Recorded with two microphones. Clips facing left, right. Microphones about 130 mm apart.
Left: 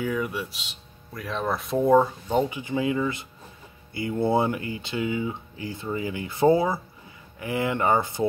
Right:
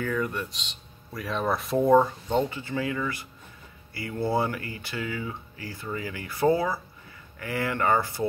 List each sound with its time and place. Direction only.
0.0 s speech: 10° left (ahead or behind)